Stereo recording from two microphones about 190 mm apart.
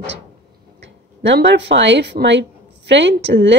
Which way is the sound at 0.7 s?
70° right (ahead or behind).